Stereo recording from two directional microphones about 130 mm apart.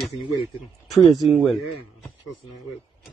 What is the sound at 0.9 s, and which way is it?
Speech, centre (ahead or behind).